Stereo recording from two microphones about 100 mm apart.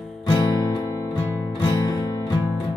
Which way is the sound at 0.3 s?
45° left (ahead or behind).